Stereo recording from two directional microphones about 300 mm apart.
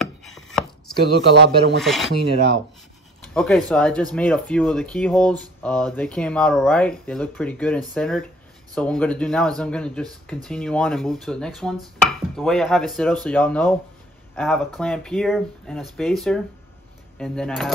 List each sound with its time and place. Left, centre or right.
0.0 s chopping: centre
1.3 s speech: right
1.8 s speech: centre
3.3 s speech: centre